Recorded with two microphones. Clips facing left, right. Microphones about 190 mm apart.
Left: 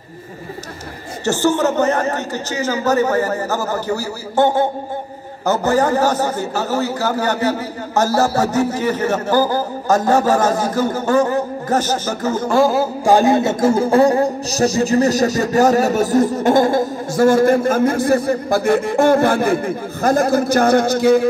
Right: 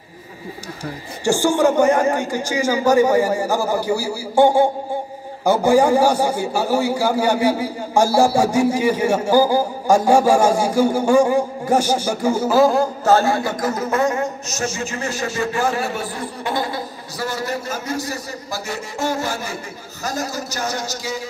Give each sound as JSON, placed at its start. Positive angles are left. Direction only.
{"t": 1.2, "sound": "a man's voice", "side_deg": -10}
{"t": 13.0, "sound": "a man's voice", "side_deg": 15}